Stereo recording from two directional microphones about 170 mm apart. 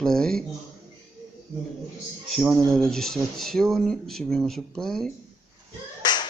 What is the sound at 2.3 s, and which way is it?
Speech, 5° right (ahead or behind).